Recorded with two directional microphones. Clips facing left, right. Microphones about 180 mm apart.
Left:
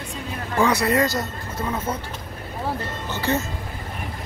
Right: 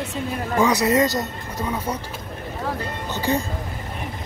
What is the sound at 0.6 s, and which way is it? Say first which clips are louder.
Speech: right 1 dB; 20° right (ahead or behind).